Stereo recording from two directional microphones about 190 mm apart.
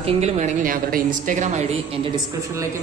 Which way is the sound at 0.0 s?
35° right (ahead or behind).